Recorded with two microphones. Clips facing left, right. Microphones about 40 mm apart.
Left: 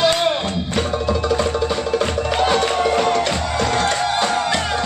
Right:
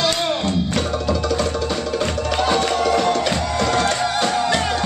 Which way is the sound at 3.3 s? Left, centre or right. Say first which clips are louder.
Even; left.